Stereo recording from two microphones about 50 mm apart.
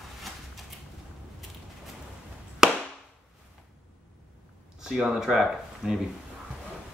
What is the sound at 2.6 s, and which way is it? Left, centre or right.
Chop, centre.